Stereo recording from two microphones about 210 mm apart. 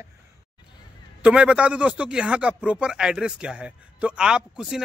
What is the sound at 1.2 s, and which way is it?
Speech, 5° right (ahead or behind).